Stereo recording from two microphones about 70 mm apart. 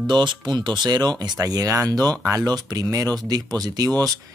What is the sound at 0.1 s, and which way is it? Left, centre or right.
Speech, right.